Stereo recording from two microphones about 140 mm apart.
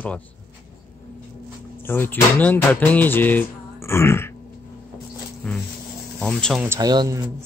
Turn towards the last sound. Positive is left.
turn(degrees=-25)  # may be behind; listen again after turning